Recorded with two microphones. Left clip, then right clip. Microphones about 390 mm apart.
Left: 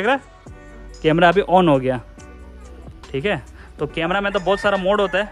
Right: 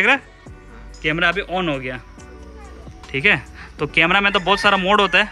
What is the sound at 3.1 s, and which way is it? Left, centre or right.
Speech, centre.